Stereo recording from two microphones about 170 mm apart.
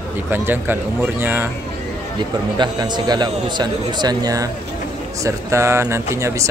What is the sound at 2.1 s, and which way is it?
A man's voice, 25° right (ahead or behind).